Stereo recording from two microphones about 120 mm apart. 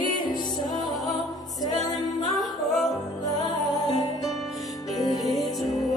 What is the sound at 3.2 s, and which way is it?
Music, 30° left (ahead or behind).